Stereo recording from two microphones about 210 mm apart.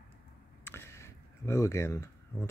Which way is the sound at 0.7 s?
10° left (ahead or behind).